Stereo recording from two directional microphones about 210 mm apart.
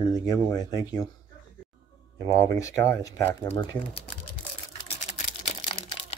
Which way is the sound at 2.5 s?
15° left (ahead or behind).